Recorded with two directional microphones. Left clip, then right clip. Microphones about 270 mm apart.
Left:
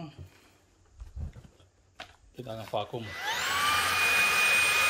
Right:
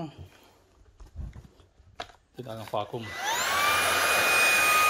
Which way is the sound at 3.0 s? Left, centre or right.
Right.